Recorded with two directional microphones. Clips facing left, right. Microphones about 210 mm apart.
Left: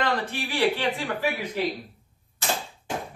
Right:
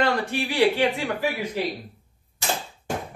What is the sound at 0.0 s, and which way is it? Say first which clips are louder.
Speech: right 4 dB; 10° right (ahead or behind).